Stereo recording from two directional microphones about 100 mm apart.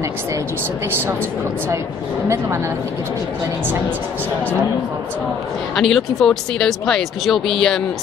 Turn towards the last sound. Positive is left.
turn(degrees=0)  # may be behind; listen again after turning